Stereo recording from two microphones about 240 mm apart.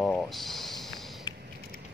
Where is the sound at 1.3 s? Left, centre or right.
Centre.